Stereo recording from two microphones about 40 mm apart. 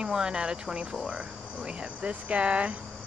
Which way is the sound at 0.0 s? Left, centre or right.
Centre.